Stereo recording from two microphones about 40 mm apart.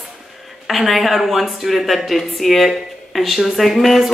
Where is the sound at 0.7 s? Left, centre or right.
Centre.